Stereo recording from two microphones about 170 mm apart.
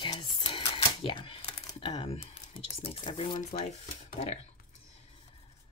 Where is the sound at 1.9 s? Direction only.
35° left (ahead or behind).